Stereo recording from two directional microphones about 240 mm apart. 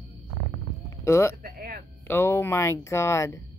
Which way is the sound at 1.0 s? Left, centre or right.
Centre.